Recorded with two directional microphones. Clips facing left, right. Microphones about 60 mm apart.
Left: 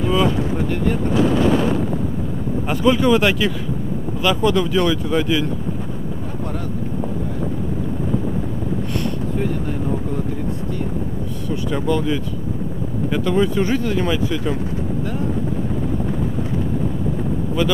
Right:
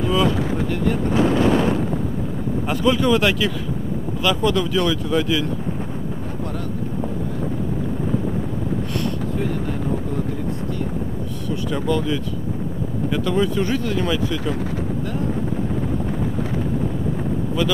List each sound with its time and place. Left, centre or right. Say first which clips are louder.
0.0 s boat: left 1 dB; centre
1.1 s speech: left 1 dB; right
2.7 s speech: left 2 dB; centre
11.7 s speech: left 2 dB; centre